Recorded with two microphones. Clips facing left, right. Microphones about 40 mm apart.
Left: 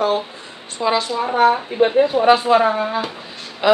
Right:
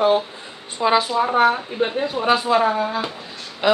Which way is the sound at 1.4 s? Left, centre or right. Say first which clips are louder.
Left 4 dB; centre.